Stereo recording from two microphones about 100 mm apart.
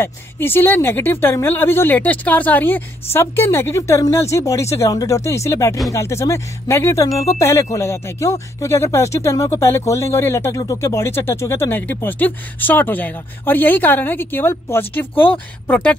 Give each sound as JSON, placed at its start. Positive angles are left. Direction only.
{"t": 0.0, "sound": "speech", "side_deg": 20}